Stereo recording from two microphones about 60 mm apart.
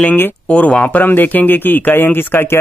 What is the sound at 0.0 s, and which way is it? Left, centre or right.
Speech, left.